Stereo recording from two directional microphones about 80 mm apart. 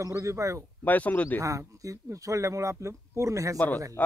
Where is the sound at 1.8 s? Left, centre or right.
Right.